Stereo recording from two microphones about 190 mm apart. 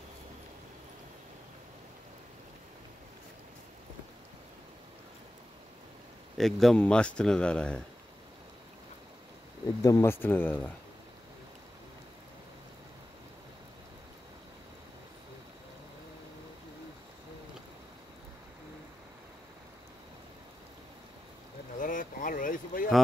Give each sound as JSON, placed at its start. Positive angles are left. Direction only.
{"t": 6.3, "sound": "a man's voice", "side_deg": 0}
{"t": 9.8, "sound": "speech", "side_deg": 15}
{"t": 21.7, "sound": "a sound", "side_deg": 45}